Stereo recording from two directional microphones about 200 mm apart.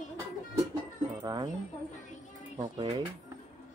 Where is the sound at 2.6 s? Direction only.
25° right (ahead or behind).